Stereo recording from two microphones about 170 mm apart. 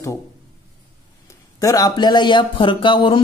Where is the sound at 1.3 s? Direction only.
20° left (ahead or behind).